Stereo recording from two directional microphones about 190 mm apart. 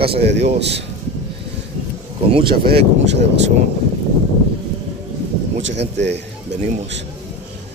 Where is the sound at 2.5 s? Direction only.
60° right (ahead or behind).